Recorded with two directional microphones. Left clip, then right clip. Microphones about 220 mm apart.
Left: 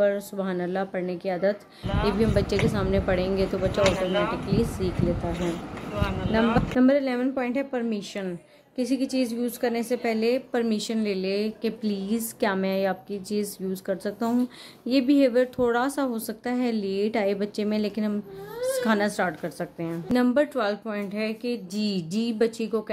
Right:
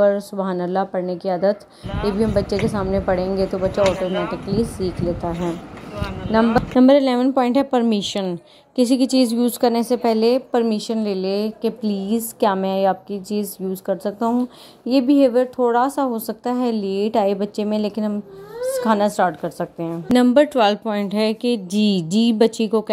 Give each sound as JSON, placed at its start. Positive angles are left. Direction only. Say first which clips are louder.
{"t": 0.0, "sound": "a woman's voice", "louder": "right 7 dB", "side_deg": -10}
{"t": 1.9, "sound": "speech", "louder": "right 3 dB", "side_deg": 0}
{"t": 6.8, "sound": "a woman's voice", "louder": "right 9 dB", "side_deg": -25}
{"t": 20.2, "sound": "speech", "louder": "right 9 dB", "side_deg": -25}